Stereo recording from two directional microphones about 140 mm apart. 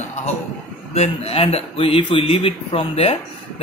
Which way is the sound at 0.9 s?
50° left (ahead or behind).